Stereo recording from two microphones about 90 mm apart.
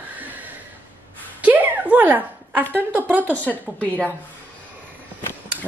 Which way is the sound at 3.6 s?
15° left (ahead or behind).